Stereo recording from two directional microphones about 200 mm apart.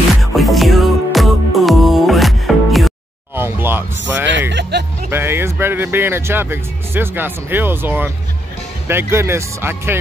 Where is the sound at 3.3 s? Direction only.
10° right (ahead or behind).